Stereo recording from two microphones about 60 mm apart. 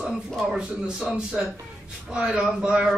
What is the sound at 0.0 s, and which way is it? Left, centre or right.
A man's voice, centre.